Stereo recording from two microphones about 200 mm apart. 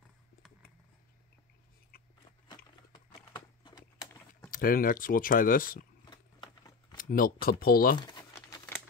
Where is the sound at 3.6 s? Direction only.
20° left (ahead or behind).